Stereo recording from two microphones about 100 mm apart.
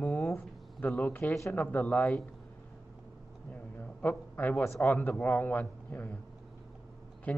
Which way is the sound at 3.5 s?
15° left (ahead or behind).